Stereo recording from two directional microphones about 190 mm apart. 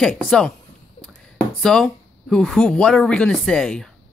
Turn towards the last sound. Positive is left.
turn(degrees=5)  # may be behind; listen again after turning